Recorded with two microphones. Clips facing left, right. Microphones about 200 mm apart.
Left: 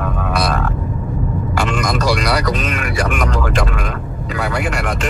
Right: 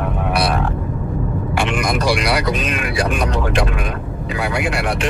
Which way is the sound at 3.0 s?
15° right (ahead or behind).